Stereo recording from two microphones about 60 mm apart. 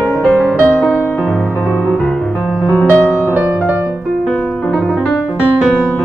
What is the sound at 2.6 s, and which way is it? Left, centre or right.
Music, left.